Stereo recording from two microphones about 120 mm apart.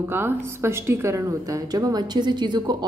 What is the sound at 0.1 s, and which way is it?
A woman's voice, 20° right (ahead or behind).